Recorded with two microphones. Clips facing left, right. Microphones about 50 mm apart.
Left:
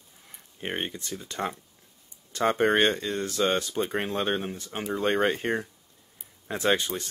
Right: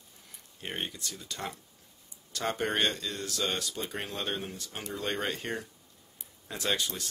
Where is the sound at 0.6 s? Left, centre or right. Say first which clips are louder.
Left 5 dB; left.